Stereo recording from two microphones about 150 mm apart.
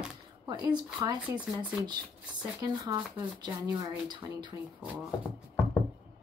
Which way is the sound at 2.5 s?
25° right (ahead or behind).